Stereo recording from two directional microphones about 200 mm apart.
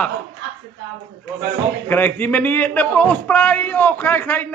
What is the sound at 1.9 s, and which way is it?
A man's voice, 10° left (ahead or behind).